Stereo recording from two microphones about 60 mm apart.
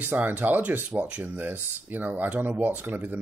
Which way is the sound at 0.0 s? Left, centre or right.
Right.